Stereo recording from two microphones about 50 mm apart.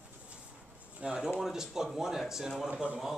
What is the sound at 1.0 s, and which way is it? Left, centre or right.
Speech, centre.